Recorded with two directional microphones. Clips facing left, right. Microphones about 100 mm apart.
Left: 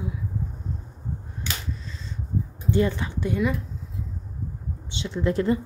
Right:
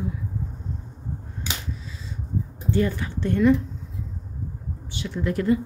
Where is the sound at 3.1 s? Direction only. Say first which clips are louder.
Right 10 dB; 10° left (ahead or behind).